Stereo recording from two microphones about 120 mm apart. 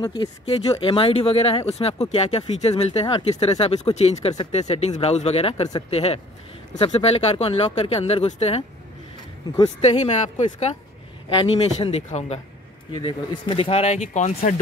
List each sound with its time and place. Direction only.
0.0 s speech: 40° left (ahead or behind)
0.7 s speech: 50° left (ahead or behind)
9.8 s speech: 60° left (ahead or behind)
11.3 s a man's voice: 40° left (ahead or behind)
11.9 s speech: 65° left (ahead or behind)
12.9 s speech: 45° left (ahead or behind); by 14.5 s 85° left